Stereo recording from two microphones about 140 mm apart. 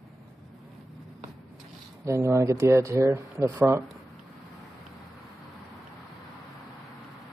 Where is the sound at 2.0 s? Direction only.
20° right (ahead or behind).